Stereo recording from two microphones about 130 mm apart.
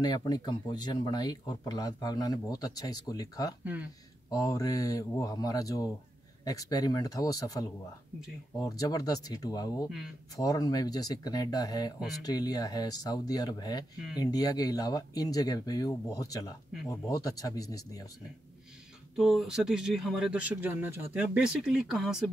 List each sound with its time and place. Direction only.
0.0 s speech: 35° left (ahead or behind)
3.6 s speech: 10° right (ahead or behind)
4.3 s speech: 30° left (ahead or behind)
19.1 s speech: centre (ahead or behind)